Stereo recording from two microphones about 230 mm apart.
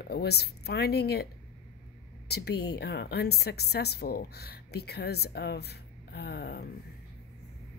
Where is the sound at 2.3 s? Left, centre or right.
Left.